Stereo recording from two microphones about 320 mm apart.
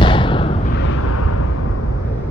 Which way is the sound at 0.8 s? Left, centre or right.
Left.